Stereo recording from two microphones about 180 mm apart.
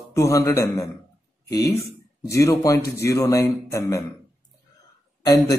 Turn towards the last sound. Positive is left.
turn(degrees=20)  # may be behind; listen again after turning